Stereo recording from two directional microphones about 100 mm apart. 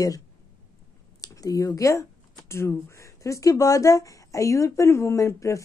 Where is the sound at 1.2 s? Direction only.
35° left (ahead or behind).